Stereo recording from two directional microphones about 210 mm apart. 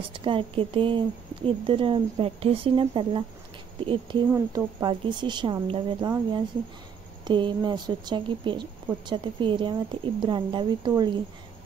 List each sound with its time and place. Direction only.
0.1 s speech: 25° right (ahead or behind)